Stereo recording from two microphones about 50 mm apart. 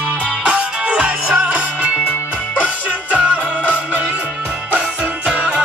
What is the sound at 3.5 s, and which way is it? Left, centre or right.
Music, right.